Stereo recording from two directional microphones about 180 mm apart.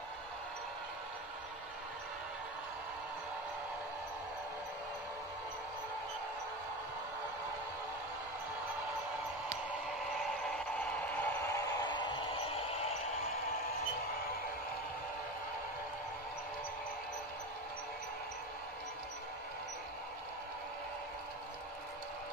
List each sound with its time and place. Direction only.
11.0 s vehicle: 10° left (ahead or behind); by 12.7 s 30° left (ahead or behind)